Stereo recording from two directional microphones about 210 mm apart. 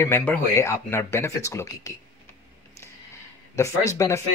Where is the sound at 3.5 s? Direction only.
15° left (ahead or behind).